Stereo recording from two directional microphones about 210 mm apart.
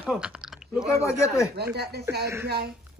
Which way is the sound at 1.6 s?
50° right (ahead or behind).